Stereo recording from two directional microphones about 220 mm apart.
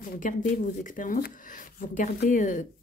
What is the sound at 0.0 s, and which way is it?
Speech, 35° left (ahead or behind).